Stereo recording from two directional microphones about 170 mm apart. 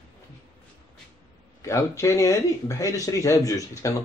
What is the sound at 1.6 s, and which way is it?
Speech, 20° left (ahead or behind).